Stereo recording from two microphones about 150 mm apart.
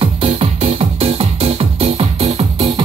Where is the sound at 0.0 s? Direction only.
45° right (ahead or behind).